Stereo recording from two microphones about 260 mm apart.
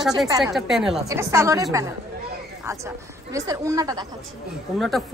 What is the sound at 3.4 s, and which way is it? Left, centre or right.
Speech, centre.